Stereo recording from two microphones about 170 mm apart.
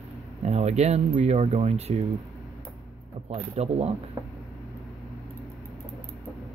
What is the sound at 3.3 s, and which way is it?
Speech, 40° right (ahead or behind).